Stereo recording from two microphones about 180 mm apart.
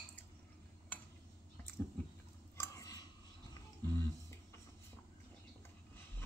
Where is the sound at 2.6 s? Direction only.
20° left (ahead or behind).